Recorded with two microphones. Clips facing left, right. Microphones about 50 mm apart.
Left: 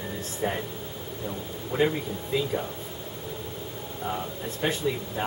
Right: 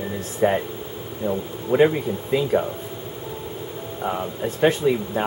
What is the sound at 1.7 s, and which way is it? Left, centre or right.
Speech, right.